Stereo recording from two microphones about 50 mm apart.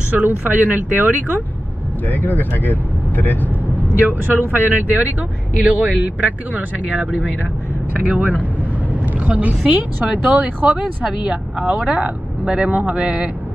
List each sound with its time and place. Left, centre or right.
0.1 s speech: right
2.0 s speech: left
3.8 s speech: right
7.0 s speech: right
8.2 s speech: right